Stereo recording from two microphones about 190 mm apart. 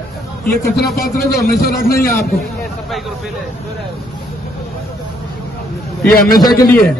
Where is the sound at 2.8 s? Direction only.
Centre (ahead or behind).